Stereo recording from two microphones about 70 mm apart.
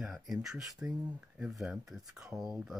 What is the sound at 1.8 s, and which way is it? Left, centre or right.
Speech, centre.